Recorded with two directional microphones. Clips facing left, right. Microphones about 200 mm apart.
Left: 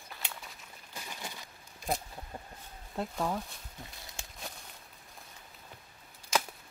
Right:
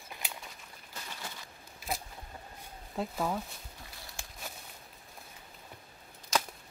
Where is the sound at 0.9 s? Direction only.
10° left (ahead or behind).